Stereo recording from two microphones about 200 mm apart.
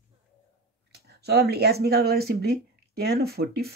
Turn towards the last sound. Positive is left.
turn(degrees=-50)  # may be behind; listen again after turning